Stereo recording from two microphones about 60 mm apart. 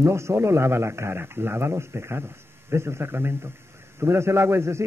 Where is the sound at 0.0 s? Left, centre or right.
Right.